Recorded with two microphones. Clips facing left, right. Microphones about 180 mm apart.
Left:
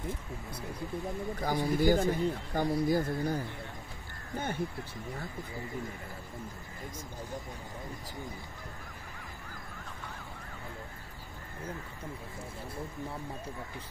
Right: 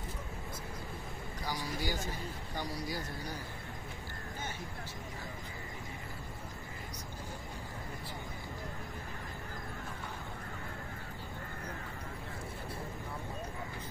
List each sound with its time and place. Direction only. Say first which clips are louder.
1.4 s speech: left 10 dB; 55° left (ahead or behind)